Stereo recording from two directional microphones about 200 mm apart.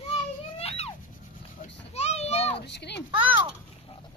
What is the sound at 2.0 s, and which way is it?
Speech, 30° left (ahead or behind).